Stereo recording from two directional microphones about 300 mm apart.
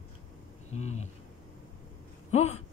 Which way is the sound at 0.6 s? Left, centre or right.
Left.